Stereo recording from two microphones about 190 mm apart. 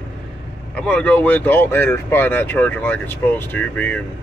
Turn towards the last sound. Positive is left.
turn(degrees=10)  # may be behind; listen again after turning